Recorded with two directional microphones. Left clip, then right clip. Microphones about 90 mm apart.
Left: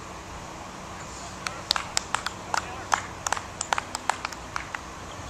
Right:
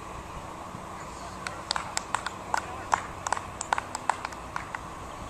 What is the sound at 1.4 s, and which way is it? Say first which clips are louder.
Run: left 4 dB; 15° left (ahead or behind).